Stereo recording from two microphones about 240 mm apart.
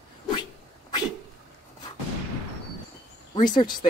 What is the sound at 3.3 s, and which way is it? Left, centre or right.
Speech, centre.